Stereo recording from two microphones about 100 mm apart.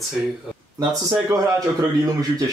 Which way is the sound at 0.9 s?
35° right (ahead or behind).